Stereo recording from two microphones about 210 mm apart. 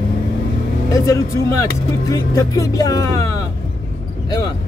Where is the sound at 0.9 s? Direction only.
15° left (ahead or behind).